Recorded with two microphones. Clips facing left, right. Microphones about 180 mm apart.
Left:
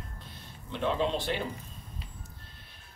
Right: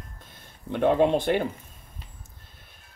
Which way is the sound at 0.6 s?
55° right (ahead or behind).